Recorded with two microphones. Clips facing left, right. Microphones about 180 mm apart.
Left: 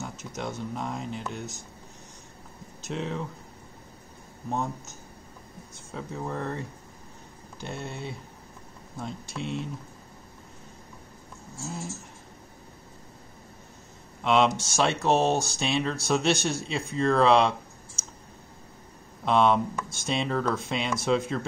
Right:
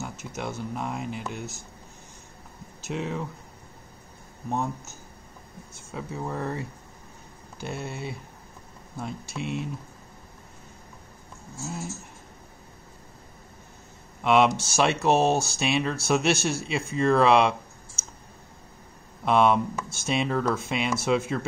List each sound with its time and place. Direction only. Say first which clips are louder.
0.0 s speech: right 1 dB; 5° right (ahead or behind)
2.8 s speech: right 1 dB; 5° right (ahead or behind)
4.5 s speech: right 1 dB; 5° right (ahead or behind)
5.9 s speech: right 1 dB; 5° right (ahead or behind)
7.6 s speech: right 2 dB; 5° right (ahead or behind)
14.2 s speech: right 2 dB; 5° right (ahead or behind)
19.2 s speech: right 1 dB; 5° right (ahead or behind)